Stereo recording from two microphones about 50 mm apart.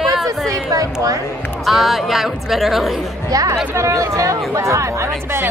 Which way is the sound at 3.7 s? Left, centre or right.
Right.